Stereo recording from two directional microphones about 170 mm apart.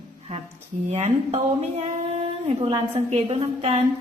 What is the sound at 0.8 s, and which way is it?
Speech, 40° right (ahead or behind).